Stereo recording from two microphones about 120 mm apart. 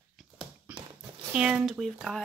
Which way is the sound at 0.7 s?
10° right (ahead or behind).